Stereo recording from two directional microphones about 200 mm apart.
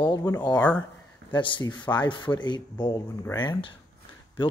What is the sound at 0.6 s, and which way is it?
Speech, 5° left (ahead or behind).